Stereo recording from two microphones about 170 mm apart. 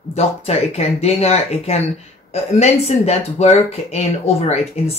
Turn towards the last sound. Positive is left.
turn(degrees=40)  # may be behind; listen again after turning